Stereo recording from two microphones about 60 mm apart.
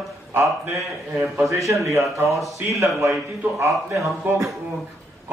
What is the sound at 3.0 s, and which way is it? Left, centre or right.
A man's voice, right.